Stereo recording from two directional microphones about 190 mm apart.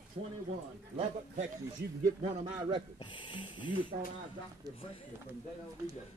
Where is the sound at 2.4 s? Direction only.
20° right (ahead or behind).